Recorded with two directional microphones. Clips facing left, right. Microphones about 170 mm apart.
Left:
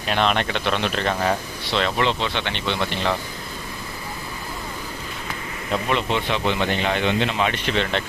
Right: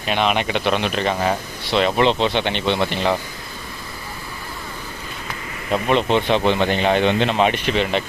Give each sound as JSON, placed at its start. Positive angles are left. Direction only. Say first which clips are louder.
{"t": 0.0, "sound": "speech", "louder": "right 1 dB", "side_deg": -5}
{"t": 5.7, "sound": "speech", "louder": "right 5 dB", "side_deg": -20}
{"t": 7.5, "sound": "speech", "louder": "right 3 dB", "side_deg": -10}